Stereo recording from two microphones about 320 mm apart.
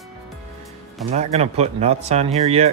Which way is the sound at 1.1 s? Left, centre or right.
Centre.